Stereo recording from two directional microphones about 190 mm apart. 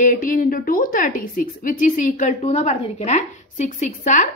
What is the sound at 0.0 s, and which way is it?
A woman's voice, 45° left (ahead or behind).